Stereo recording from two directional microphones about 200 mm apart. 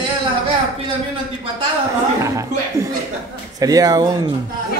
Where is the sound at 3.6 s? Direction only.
15° right (ahead or behind).